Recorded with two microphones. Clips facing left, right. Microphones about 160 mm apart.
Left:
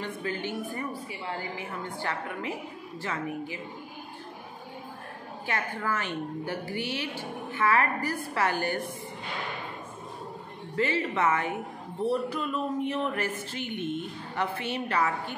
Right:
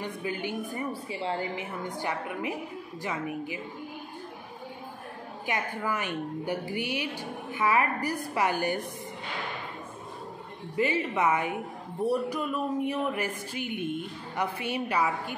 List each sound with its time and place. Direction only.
0.0 s speech: 15° right (ahead or behind)
5.5 s speech: 15° right (ahead or behind)
10.8 s speech: 15° right (ahead or behind)